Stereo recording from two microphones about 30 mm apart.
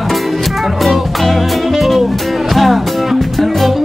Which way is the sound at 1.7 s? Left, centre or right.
Centre.